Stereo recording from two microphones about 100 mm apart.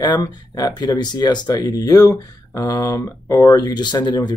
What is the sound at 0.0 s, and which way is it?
Speech, 45° left (ahead or behind).